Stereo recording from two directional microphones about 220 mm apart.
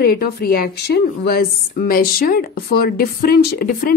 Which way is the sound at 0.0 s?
45° left (ahead or behind).